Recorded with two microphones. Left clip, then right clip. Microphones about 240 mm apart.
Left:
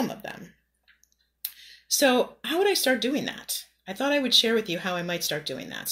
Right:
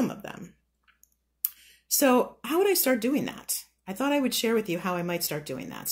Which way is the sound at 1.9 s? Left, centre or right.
Right.